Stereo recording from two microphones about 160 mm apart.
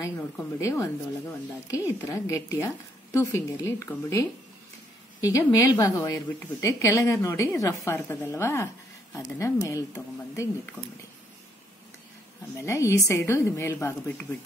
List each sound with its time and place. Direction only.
0.4 s a woman's voice: 20° left (ahead or behind)
12.5 s a woman's voice: 20° left (ahead or behind)